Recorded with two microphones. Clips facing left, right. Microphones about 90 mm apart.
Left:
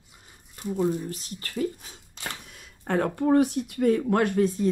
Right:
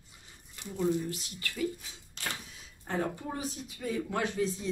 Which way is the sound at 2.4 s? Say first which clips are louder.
Left 10 dB; 60° left (ahead or behind).